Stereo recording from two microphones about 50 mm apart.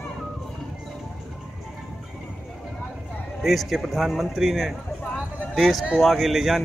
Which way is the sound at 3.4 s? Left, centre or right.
Centre.